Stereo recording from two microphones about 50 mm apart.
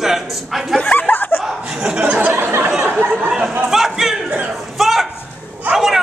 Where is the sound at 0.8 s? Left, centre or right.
Left.